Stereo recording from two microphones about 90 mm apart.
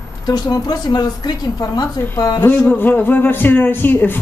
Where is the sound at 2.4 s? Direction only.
20° left (ahead or behind).